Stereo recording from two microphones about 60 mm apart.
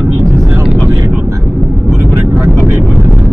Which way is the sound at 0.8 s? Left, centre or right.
Right.